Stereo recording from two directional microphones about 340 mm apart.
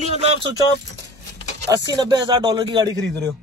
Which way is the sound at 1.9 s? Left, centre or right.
Centre.